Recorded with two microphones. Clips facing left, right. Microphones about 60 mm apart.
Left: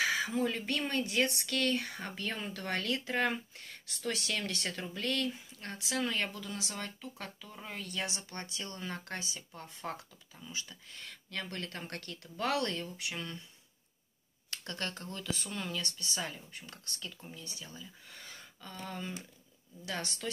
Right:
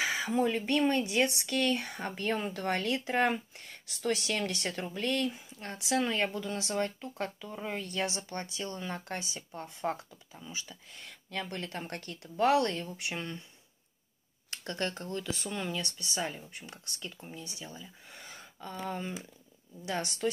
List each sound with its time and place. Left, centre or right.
0.3 s speech: right
5.9 s speech: right
10.3 s speech: centre
14.5 s speech: right